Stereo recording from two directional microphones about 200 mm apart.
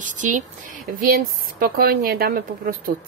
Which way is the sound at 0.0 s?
40° right (ahead or behind).